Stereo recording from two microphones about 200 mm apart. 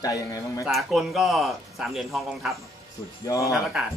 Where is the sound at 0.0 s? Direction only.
20° left (ahead or behind).